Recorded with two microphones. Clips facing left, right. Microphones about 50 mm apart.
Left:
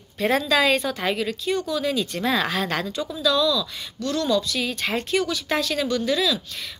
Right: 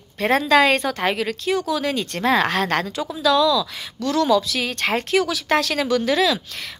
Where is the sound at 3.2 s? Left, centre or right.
Right.